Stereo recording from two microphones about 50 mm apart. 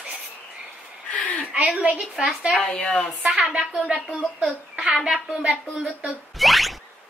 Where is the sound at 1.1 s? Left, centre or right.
Left.